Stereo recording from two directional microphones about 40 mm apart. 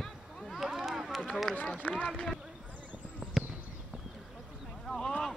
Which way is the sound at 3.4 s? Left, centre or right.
Centre.